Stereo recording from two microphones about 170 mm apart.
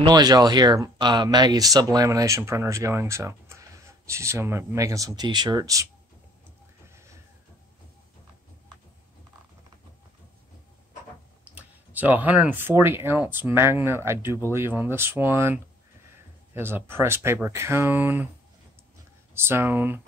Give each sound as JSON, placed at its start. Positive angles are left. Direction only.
{"t": 0.0, "sound": "speech", "side_deg": -25}
{"t": 11.4, "sound": "speech", "side_deg": -10}
{"t": 19.3, "sound": "speech", "side_deg": -15}